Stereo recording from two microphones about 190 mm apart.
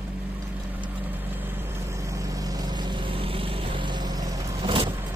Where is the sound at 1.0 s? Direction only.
10° right (ahead or behind); by 4.9 s 25° right (ahead or behind).